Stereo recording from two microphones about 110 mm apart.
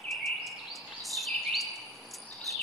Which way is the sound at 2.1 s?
Centre (ahead or behind).